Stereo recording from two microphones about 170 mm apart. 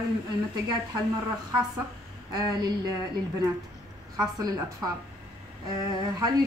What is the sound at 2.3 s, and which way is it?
Speech, 25° right (ahead or behind).